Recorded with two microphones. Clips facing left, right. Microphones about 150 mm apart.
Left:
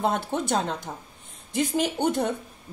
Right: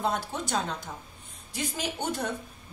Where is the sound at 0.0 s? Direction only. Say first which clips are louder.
Left 4 dB; 60° left (ahead or behind).